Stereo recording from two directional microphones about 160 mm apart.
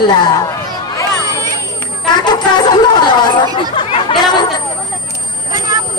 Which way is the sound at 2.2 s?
25° left (ahead or behind).